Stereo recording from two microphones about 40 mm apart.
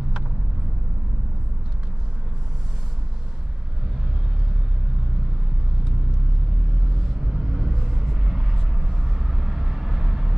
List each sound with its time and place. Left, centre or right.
7.3 s vehicle: centre